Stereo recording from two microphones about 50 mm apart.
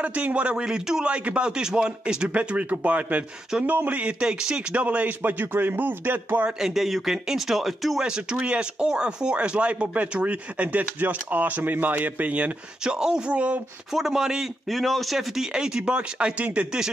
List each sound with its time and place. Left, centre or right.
0.0 s speech: right; by 1.0 s centre
1.0 s speech: right
4.3 s speech: centre
4.8 s speech: right
6.6 s speech: centre
8.0 s speech: centre
12.8 s speech: centre
13.3 s speech: right
13.9 s speech: centre
14.7 s speech: centre; by 16.6 s right